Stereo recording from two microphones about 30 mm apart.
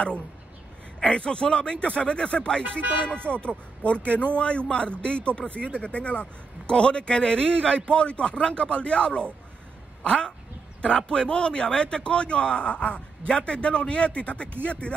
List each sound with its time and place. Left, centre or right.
1.0 s a man's voice: left
2.6 s music: right
3.1 s a man's voice: left
5.8 s speech: left
6.7 s a man's voice: left